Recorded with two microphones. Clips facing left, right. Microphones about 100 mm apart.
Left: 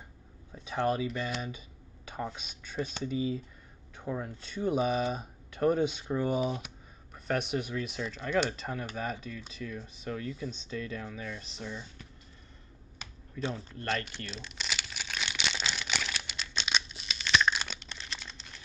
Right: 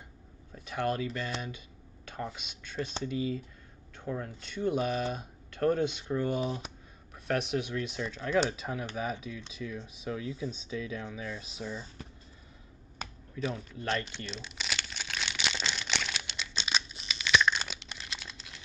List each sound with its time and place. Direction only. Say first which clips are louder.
0.8 s speech: left 2 dB; 5° left (ahead or behind)
2.0 s a sound: left 1 dB; 10° left (ahead or behind)
2.6 s speech: left 1 dB; 5° left (ahead or behind)
13.0 s computer keyboard: right 7 dB; 40° right (ahead or behind)
13.4 s speech: right 1 dB; centre (ahead or behind)
13.7 s crumpling: right 1 dB; centre (ahead or behind)